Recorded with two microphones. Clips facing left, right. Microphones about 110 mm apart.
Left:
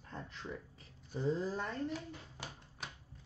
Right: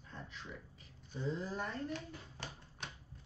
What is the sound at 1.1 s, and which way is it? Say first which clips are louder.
Speech: left 4 dB; 35° left (ahead or behind).